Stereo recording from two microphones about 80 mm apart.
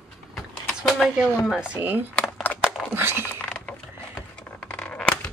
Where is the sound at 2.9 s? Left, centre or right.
Right.